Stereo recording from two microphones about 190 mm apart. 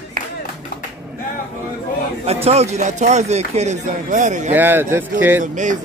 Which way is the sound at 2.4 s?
35° right (ahead or behind).